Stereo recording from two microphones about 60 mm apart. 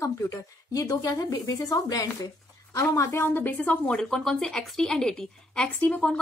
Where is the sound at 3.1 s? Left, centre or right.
Left.